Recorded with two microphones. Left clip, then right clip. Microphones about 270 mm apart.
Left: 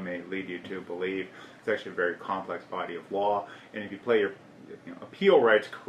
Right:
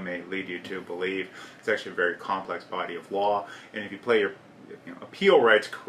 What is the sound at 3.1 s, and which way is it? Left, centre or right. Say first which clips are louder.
Speech: right 2 dB; left.